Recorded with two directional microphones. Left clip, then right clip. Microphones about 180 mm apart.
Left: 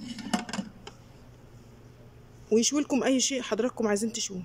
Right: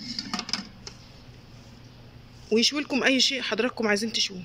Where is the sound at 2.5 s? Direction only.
20° left (ahead or behind).